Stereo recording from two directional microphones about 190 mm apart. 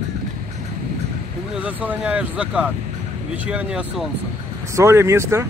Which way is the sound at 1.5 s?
10° right (ahead or behind).